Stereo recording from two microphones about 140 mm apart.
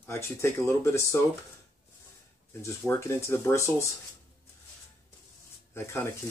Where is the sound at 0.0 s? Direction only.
20° left (ahead or behind).